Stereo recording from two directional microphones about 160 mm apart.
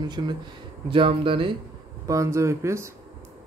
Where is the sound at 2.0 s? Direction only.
20° right (ahead or behind).